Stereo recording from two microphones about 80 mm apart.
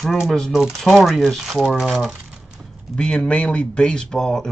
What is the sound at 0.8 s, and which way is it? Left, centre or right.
Speech, centre.